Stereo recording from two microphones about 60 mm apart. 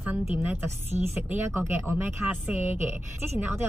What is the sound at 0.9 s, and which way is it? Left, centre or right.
Speech, right.